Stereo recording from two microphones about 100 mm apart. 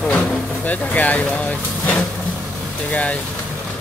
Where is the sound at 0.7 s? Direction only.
15° left (ahead or behind).